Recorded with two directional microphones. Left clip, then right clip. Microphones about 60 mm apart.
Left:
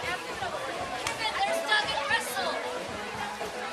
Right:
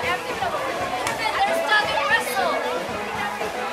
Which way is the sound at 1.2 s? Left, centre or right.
Left.